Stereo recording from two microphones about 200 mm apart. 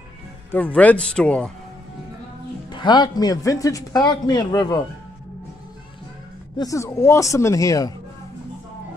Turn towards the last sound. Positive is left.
turn(degrees=15)  # may be behind; listen again after turning